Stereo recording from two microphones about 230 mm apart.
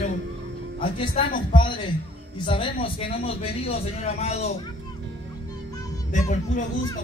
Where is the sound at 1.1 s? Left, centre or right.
Left.